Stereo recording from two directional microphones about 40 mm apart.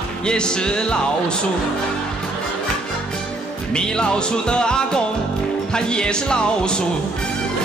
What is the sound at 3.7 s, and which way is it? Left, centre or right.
Speech, left.